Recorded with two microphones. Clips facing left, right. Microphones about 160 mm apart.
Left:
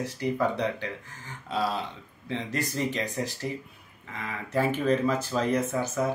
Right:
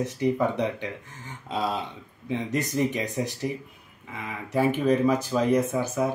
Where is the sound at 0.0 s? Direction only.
20° right (ahead or behind).